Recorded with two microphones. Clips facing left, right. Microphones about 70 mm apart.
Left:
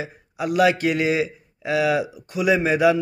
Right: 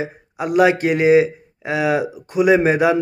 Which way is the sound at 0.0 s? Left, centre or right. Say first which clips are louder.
Right 3 dB; right.